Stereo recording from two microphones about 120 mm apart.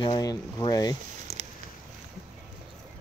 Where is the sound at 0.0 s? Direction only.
35° left (ahead or behind).